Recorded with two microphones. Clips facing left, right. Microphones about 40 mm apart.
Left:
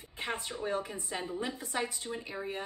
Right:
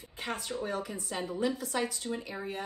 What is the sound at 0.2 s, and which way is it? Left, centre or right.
A woman's voice, left.